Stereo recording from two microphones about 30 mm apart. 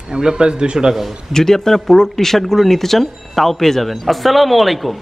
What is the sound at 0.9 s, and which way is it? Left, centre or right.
Speech, centre.